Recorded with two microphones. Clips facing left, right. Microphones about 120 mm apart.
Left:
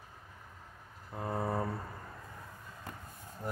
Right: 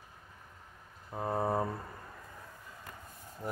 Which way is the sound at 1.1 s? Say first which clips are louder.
Right 3 dB; 25° right (ahead or behind).